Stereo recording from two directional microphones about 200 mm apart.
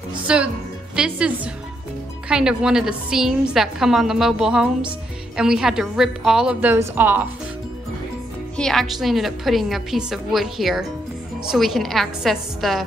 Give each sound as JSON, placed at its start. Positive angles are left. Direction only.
{"t": 0.3, "sound": "a woman's voice", "side_deg": -5}
{"t": 8.5, "sound": "a woman's voice", "side_deg": 0}